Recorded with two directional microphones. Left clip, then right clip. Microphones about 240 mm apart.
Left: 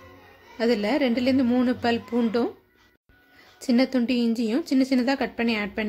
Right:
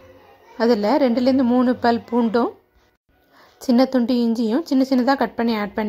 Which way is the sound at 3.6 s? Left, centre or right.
Centre.